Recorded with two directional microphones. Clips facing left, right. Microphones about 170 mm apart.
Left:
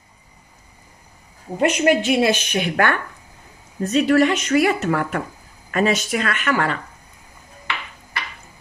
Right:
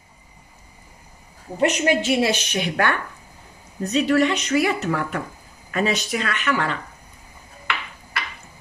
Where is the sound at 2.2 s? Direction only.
55° left (ahead or behind).